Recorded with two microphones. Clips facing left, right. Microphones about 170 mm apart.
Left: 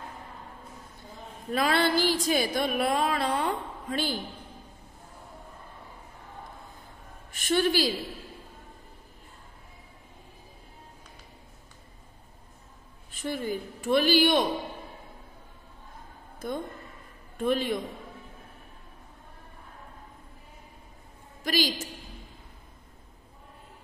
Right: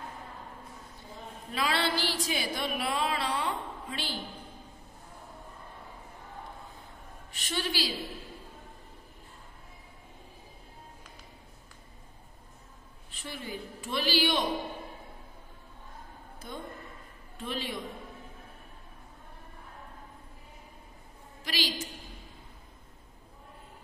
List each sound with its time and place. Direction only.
1.5 s a sound: 50° left (ahead or behind)
7.3 s a woman's voice: 50° left (ahead or behind)
13.1 s a woman's voice: 45° left (ahead or behind)
17.4 s a man's voice: 50° left (ahead or behind)
21.5 s a man's voice: 45° left (ahead or behind)